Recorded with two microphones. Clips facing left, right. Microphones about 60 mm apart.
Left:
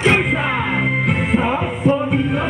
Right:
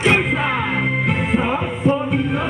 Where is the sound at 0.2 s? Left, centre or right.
Centre.